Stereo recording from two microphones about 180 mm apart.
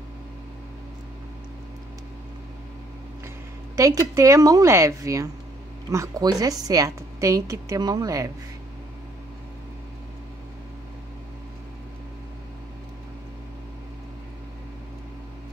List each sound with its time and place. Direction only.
3.7 s a woman's voice: 20° right (ahead or behind)